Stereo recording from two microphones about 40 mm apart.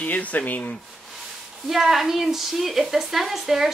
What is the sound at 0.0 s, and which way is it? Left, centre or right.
Speech, left.